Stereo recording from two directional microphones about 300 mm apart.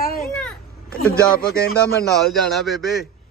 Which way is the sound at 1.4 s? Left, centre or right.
Left.